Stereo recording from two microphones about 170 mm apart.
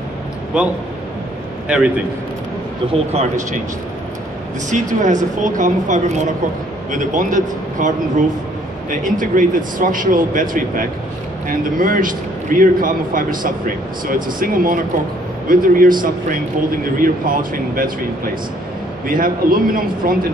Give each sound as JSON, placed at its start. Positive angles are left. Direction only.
{"t": 0.5, "sound": "a man's voice", "side_deg": -5}
{"t": 3.1, "sound": "speech", "side_deg": -40}
{"t": 4.6, "sound": "a man's voice", "side_deg": -45}
{"t": 9.0, "sound": "a man's voice", "side_deg": -50}